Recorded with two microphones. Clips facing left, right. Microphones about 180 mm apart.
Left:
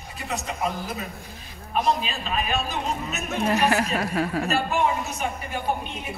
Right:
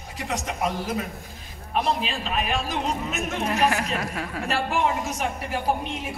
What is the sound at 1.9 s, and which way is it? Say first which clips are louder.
A man's voice: right 1 dB; 80° right.